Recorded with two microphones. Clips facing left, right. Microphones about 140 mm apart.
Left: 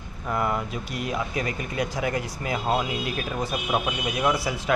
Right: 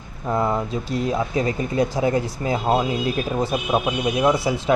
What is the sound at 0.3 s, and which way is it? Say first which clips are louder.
A man's voice: right 5 dB; 25° right (ahead or behind).